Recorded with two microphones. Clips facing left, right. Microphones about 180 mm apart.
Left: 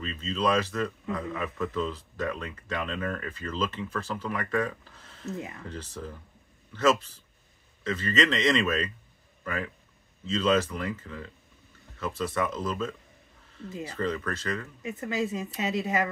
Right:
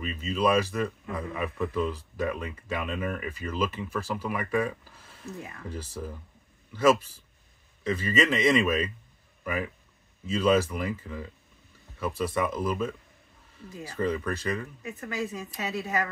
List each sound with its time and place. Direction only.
0.0 s a man's voice: 10° right (ahead or behind)
14.8 s speech: 20° left (ahead or behind)